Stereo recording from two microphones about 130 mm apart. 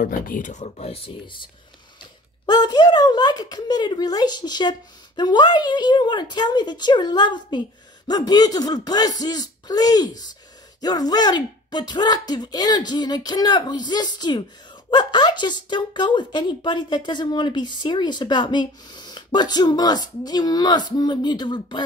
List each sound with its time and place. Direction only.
0.3 s speech: 80° left; by 1.4 s 40° left (ahead or behind)
2.4 s speech: 35° left (ahead or behind)